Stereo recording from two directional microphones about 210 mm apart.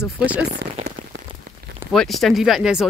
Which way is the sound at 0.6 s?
50° right (ahead or behind).